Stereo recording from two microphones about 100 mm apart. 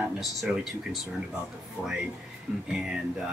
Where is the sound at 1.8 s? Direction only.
10° right (ahead or behind).